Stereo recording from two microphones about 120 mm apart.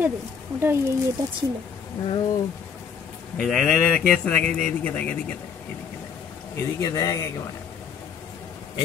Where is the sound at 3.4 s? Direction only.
Centre (ahead or behind).